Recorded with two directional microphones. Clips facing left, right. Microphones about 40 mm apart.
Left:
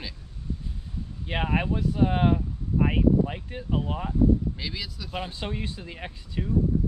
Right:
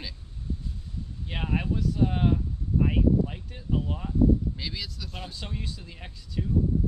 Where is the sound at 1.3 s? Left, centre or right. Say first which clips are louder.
Left 4 dB; left.